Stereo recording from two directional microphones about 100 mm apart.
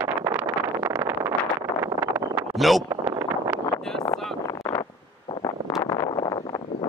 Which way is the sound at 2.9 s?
35° right (ahead or behind).